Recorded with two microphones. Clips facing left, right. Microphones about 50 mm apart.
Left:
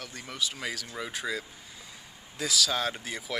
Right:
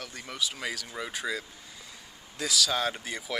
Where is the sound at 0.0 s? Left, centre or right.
Centre.